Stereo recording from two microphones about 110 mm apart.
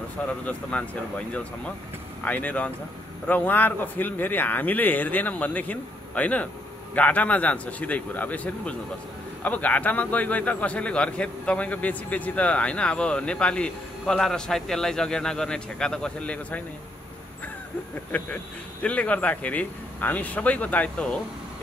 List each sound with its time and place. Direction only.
0.3 s a man's voice: 10° left (ahead or behind)
18.1 s a man's voice: 10° left (ahead or behind)